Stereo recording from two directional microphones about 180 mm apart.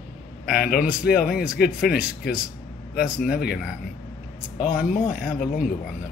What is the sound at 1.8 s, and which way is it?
Speech, 5° right (ahead or behind).